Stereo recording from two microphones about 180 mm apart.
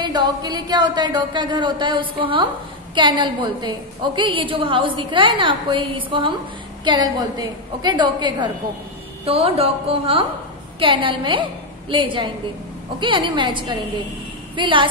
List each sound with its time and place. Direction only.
0.0 s a woman's voice: 25° right (ahead or behind)